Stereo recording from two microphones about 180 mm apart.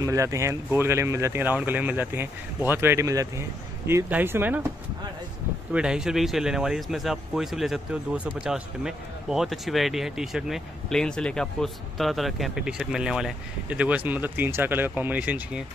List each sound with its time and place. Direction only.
0.0 s speech: 15° right (ahead or behind)
5.7 s speech: 5° right (ahead or behind)